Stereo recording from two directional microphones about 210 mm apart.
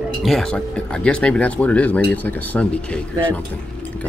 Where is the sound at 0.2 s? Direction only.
Centre (ahead or behind).